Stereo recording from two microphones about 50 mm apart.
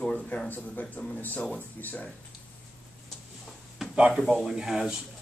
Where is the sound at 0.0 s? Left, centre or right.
Left.